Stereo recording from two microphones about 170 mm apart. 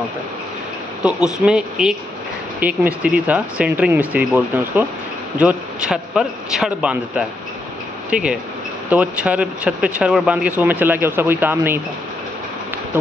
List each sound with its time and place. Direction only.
1.0 s a man's voice: 5° right (ahead or behind)